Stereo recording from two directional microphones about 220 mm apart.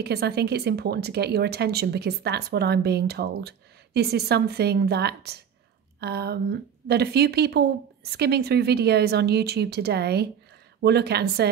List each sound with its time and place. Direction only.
0.0 s speech: 45° right (ahead or behind)